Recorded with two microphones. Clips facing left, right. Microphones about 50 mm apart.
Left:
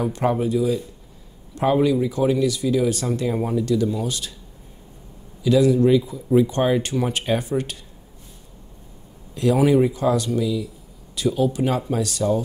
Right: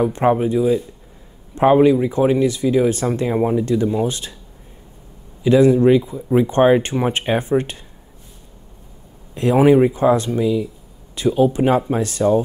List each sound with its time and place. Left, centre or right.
0.0 s speech: right
5.4 s speech: right
9.3 s speech: right